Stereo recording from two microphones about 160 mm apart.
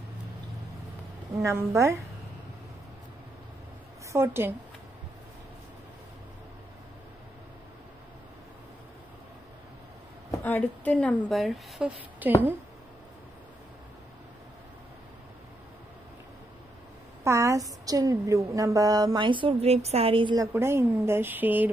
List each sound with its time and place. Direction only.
1.4 s speech: 20° right (ahead or behind)
4.1 s speech: 15° right (ahead or behind)
10.4 s a woman's voice: 10° left (ahead or behind)
12.2 s speech: 10° right (ahead or behind)
17.2 s a woman's voice: 20° right (ahead or behind)
20.5 s speech: 15° right (ahead or behind)